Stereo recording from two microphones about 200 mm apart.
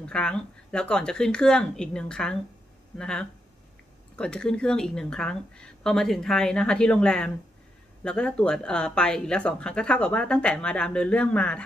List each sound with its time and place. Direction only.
0.0 s speech: 5° left (ahead or behind)